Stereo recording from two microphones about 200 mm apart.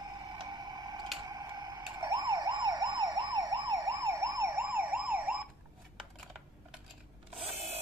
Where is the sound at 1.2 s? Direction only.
15° right (ahead or behind).